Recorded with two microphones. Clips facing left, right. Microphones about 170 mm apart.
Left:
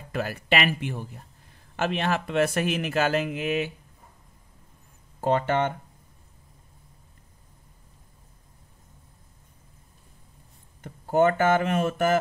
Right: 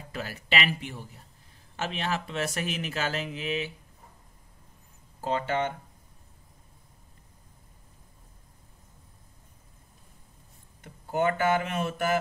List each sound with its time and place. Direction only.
0.1 s speech: 50° left (ahead or behind)
5.2 s speech: 55° left (ahead or behind)
10.8 s speech: 50° left (ahead or behind)